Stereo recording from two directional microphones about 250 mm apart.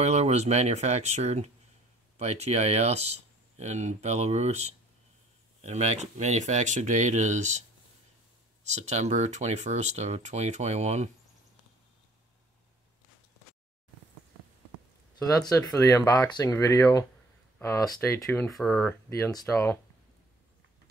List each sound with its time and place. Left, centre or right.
0.0 s speech: right
8.7 s speech: right
15.1 s speech: centre